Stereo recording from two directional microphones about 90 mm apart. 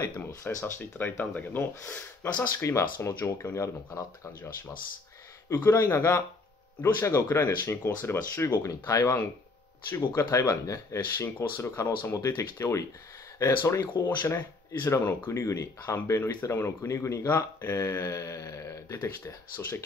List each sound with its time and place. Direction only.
0.4 s speech: 25° left (ahead or behind)
2.5 s speech: 35° left (ahead or behind)
5.5 s speech: 30° left (ahead or behind)